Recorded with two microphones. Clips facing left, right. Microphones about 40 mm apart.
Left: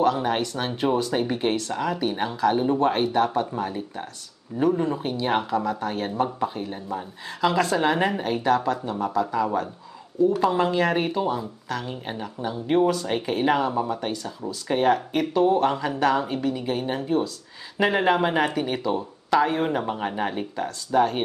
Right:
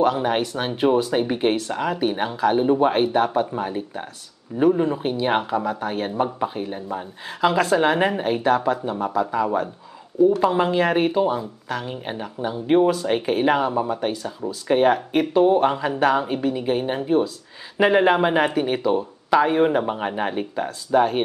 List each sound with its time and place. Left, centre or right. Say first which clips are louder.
0.0 s speech: right 2 dB; centre